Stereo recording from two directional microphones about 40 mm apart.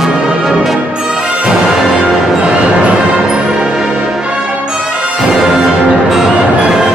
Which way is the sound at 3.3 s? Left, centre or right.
Centre.